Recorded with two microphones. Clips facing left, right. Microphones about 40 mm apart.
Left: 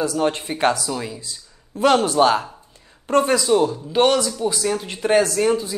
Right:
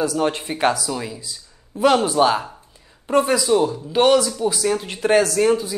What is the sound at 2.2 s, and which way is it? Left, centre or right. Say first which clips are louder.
Speech: left 1 dB; centre.